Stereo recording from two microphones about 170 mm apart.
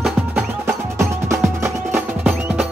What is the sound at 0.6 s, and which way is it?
Music, 15° right (ahead or behind).